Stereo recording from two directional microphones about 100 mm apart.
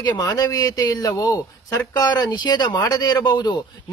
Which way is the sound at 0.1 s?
35° left (ahead or behind).